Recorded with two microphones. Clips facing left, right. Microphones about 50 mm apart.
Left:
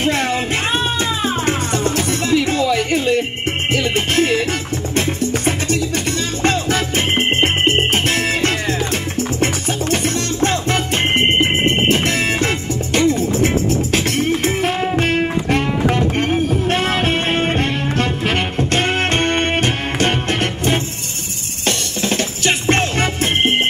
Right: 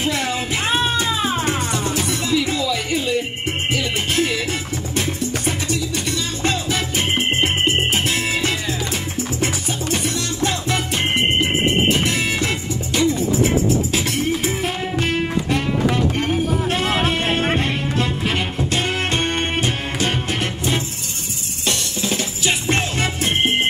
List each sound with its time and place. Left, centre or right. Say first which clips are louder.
0.0 s music: left 4 dB; left
1.4 s music: left 3 dB; left